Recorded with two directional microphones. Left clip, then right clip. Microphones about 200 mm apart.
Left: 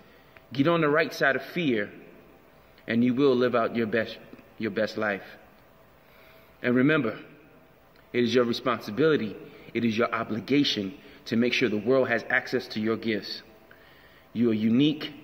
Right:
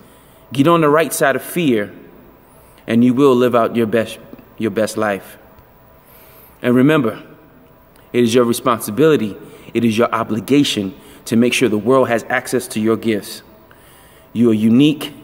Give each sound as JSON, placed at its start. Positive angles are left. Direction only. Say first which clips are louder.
{"t": 0.5, "sound": "a man's voice", "louder": "right 11 dB", "side_deg": -10}
{"t": 6.6, "sound": "a man's voice", "louder": "right 10 dB", "side_deg": -10}